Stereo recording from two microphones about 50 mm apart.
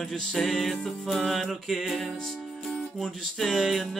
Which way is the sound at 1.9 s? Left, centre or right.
Centre.